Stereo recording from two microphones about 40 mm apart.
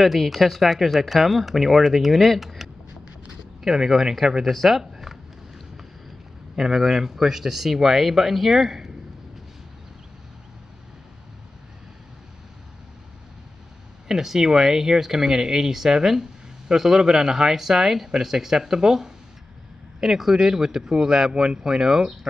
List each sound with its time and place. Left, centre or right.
0.0 s speech: centre
6.5 s speech: centre
14.0 s speech: centre